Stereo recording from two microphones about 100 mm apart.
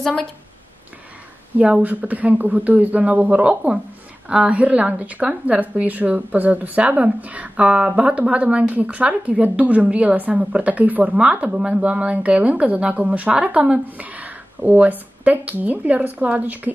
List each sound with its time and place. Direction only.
1.6 s a woman's voice: 15° right (ahead or behind)